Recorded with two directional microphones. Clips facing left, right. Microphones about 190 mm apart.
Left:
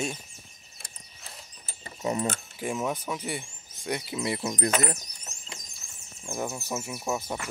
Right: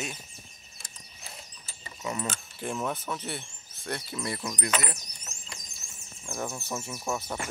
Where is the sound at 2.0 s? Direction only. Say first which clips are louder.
Left 5 dB; 30° left (ahead or behind).